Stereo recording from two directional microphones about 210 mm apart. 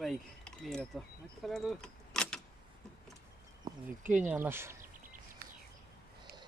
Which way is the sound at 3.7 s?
20° right (ahead or behind).